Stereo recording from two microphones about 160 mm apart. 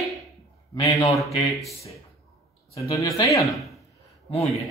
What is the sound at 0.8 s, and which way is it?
Speech, 20° left (ahead or behind).